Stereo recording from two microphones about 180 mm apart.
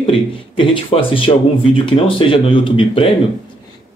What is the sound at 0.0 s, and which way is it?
Speech, 30° left (ahead or behind).